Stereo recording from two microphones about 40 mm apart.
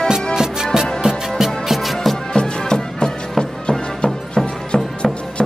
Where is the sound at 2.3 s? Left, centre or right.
Centre.